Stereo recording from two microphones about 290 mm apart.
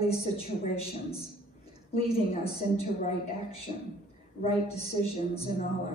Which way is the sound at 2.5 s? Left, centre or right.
Left.